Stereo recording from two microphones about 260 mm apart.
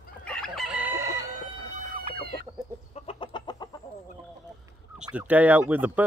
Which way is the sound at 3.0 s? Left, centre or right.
Centre.